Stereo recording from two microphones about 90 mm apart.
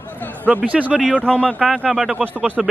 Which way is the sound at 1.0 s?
15° left (ahead or behind).